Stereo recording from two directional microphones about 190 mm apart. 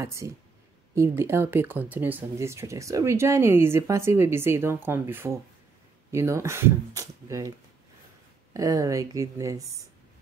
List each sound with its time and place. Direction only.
0.0 s speech: 15° right (ahead or behind)
8.5 s speech: 20° right (ahead or behind)